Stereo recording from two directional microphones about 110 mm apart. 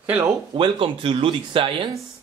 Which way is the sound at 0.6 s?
50° right (ahead or behind).